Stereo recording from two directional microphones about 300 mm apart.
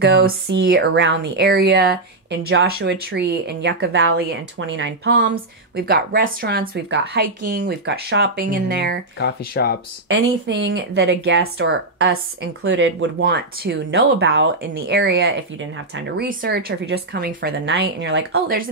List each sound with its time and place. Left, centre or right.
0.0 s a woman's voice: right
9.5 s speech: left
10.0 s a woman's voice: right